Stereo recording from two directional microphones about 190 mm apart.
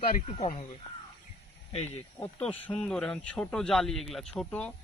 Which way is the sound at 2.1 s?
10° left (ahead or behind).